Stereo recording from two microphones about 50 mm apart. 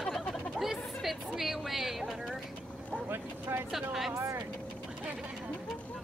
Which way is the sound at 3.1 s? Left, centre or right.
Right.